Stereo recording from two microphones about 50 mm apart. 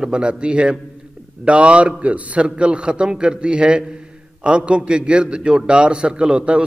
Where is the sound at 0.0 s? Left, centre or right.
Centre.